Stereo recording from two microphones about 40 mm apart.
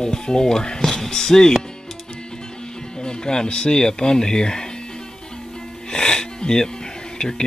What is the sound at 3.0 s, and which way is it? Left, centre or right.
Speech, left.